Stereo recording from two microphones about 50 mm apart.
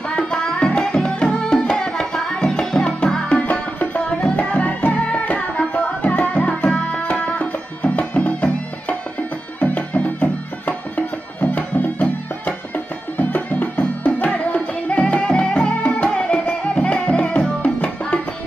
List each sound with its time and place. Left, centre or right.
0.1 s tabla: centre
6.5 s music: left